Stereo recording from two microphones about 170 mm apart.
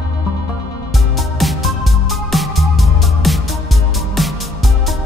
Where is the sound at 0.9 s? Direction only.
Centre (ahead or behind).